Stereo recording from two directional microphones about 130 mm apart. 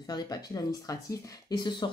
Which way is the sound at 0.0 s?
30° left (ahead or behind).